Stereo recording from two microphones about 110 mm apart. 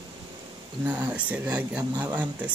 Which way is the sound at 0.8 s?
15° right (ahead or behind).